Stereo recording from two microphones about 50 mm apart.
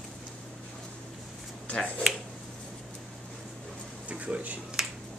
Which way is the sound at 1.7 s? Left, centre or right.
Centre.